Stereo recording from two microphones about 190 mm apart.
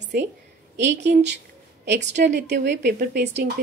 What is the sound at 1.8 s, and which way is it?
A woman's voice, 65° right (ahead or behind).